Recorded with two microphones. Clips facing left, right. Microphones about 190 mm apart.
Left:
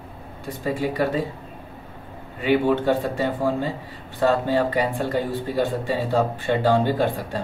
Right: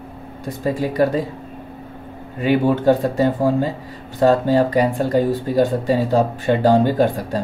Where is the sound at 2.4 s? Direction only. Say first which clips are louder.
Right 4 dB; 40° right (ahead or behind).